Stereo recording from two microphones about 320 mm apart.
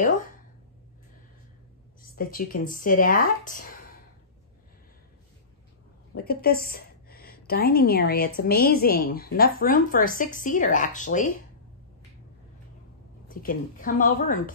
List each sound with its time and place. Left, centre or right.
2.1 s a woman's voice: left
6.1 s a woman's voice: left
13.3 s a woman's voice: left